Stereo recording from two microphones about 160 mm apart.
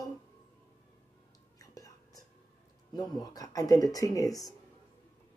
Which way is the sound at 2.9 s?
25° left (ahead or behind).